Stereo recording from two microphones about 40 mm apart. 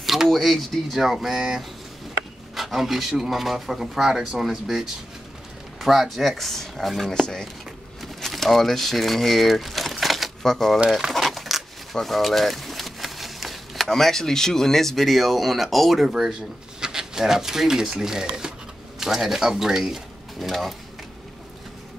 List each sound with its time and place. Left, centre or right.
0.0 s speech: centre
2.5 s speech: centre
5.8 s speech: centre
8.0 s crumpling: centre
10.4 s speech: centre
10.9 s speech: centre
11.2 s a sound: centre
13.8 s speech: centre